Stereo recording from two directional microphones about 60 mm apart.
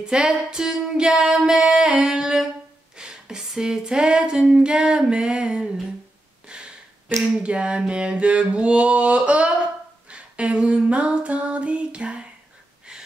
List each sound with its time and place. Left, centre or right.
0.0 s female singing: centre
6.5 s a sound: centre
7.3 s mantra: centre
10.0 s female singing: centre